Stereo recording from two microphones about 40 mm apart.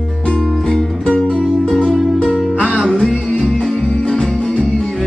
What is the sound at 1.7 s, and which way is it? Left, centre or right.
Music, centre.